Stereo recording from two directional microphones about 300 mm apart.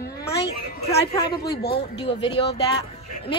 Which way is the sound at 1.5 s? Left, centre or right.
Left.